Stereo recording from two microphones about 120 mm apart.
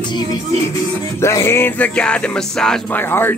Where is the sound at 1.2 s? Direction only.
20° left (ahead or behind).